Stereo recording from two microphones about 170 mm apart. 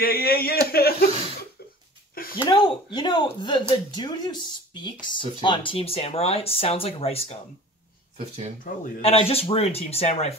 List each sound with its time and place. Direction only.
0.0 s speech: 65° left (ahead or behind)
1.6 s a sound: 65° left (ahead or behind)
2.3 s speech: 30° left (ahead or behind)
8.6 s a man's voice: 55° left (ahead or behind)
9.0 s speech: 35° left (ahead or behind)